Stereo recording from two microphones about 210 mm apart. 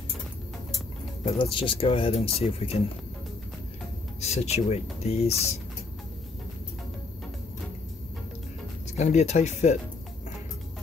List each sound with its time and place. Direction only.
1.2 s speech: 25° left (ahead or behind)
4.2 s speech: 30° left (ahead or behind)
8.9 s speech: 35° left (ahead or behind)